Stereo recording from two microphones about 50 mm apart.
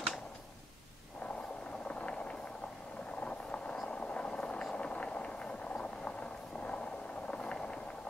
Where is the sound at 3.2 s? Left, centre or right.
Left.